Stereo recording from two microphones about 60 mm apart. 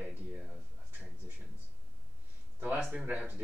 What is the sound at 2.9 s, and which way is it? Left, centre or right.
Speech, right.